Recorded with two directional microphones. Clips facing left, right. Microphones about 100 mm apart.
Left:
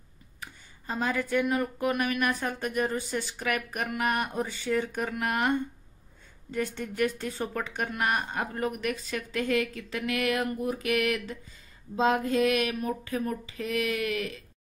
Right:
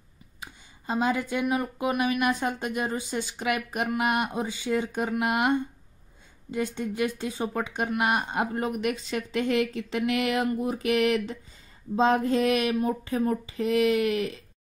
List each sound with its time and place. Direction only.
0.4 s speech: 20° right (ahead or behind)